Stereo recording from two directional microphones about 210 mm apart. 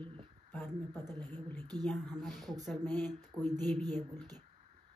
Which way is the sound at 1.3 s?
10° left (ahead or behind).